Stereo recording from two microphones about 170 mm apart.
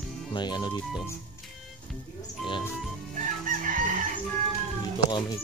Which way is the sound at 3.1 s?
50° right (ahead or behind).